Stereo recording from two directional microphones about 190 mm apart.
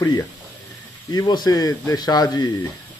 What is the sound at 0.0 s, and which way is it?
A man's voice, 15° left (ahead or behind).